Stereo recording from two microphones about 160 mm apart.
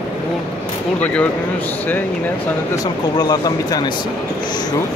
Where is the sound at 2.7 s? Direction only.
25° left (ahead or behind).